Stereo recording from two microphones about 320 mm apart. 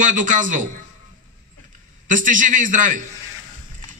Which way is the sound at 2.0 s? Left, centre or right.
Right.